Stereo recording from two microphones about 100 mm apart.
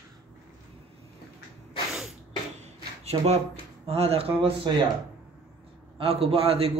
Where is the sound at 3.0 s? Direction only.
90° right.